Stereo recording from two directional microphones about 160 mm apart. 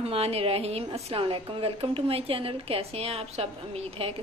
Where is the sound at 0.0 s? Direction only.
40° right (ahead or behind).